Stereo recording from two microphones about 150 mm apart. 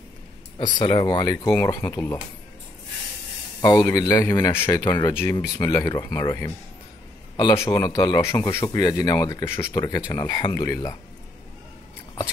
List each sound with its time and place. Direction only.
0.6 s speech: 30° left (ahead or behind)
3.6 s speech: 25° left (ahead or behind)
7.5 s speech: 20° left (ahead or behind)